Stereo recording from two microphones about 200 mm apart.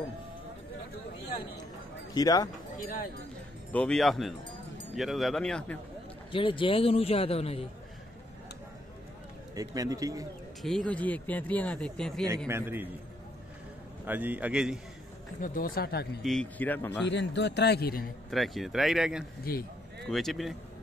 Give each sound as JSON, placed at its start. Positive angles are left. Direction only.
{"t": 2.1, "sound": "a man's voice", "side_deg": 20}
{"t": 3.7, "sound": "speech", "side_deg": 5}
{"t": 6.3, "sound": "a man's voice", "side_deg": 25}
{"t": 9.6, "sound": "a man's voice", "side_deg": -15}
{"t": 10.6, "sound": "speech", "side_deg": 5}
{"t": 12.4, "sound": "a man's voice", "side_deg": -10}
{"t": 14.0, "sound": "a man's voice", "side_deg": -10}
{"t": 15.4, "sound": "speech", "side_deg": 45}
{"t": 16.2, "sound": "speech", "side_deg": 0}
{"t": 17.1, "sound": "a man's voice", "side_deg": 60}
{"t": 18.3, "sound": "speech", "side_deg": 0}
{"t": 19.5, "sound": "speech", "side_deg": 50}
{"t": 20.1, "sound": "speech", "side_deg": 0}